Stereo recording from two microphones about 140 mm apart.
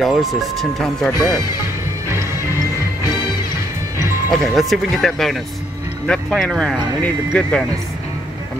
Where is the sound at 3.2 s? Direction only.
30° left (ahead or behind).